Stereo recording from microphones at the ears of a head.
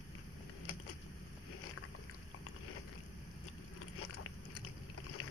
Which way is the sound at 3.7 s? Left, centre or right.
Left.